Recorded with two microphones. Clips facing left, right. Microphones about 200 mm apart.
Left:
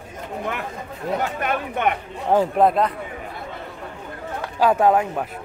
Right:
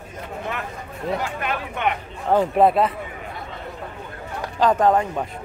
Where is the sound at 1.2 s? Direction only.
50° left (ahead or behind).